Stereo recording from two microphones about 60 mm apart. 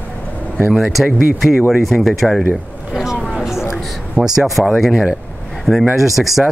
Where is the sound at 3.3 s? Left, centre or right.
Centre.